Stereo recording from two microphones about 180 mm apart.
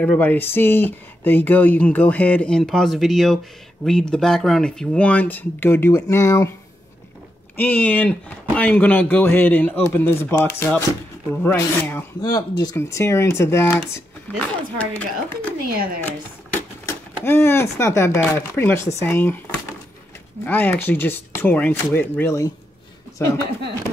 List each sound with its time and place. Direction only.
0.0 s speech: 10° left (ahead or behind)
7.5 s speech: 10° left (ahead or behind)
15.7 s speech: 55° right (ahead or behind)
16.8 s speech: 15° left (ahead or behind)
20.4 s speech: 10° left (ahead or behind)